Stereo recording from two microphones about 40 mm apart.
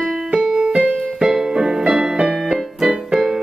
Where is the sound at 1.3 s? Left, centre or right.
Centre.